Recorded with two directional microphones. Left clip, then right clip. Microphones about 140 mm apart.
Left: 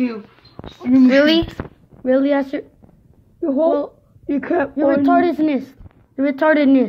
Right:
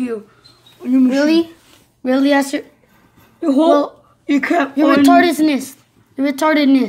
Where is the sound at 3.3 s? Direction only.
45° left (ahead or behind).